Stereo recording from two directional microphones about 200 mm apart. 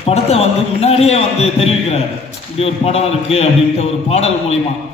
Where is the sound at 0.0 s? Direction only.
30° left (ahead or behind).